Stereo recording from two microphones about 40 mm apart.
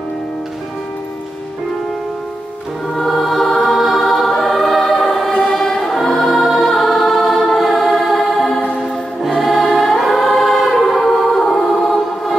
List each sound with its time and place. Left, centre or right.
3.0 s music: centre
9.4 s choir: centre